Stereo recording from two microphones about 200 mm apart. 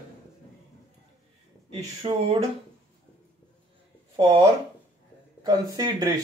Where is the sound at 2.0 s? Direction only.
30° right (ahead or behind).